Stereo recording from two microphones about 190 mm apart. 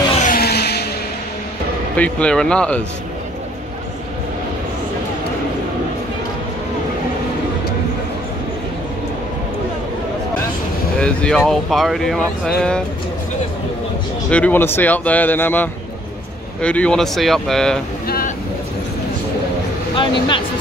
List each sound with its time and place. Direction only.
0.1 s vehicle: 45° left (ahead or behind); by 0.8 s 60° left (ahead or behind)
2.0 s speech: 5° left (ahead or behind)
11.0 s speech: 5° left (ahead or behind)
14.3 s speech: 10° left (ahead or behind)
18.0 s vehicle: 50° left (ahead or behind)
20.0 s speech: 25° left (ahead or behind)